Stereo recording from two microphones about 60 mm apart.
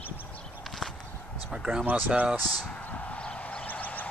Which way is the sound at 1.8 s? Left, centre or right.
Right.